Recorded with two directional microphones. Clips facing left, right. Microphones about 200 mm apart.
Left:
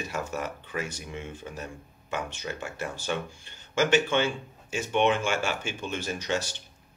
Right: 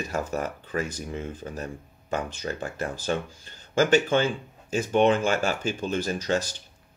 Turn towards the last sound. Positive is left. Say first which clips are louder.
# right 4 dB
turn(degrees=-40)  # may be behind; listen again after turning